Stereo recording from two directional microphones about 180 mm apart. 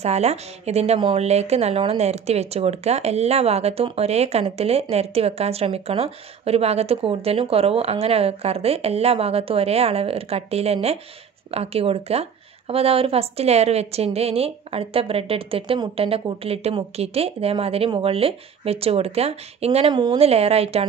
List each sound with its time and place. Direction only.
0.0 s a woman's voice: 35° right (ahead or behind)